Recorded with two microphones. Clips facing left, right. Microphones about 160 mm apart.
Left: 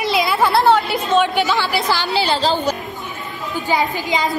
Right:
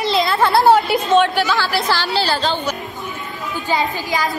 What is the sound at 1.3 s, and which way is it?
A woman's voice, 20° left (ahead or behind).